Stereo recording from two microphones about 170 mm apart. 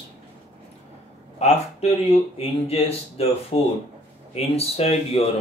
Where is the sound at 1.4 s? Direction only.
40° left (ahead or behind).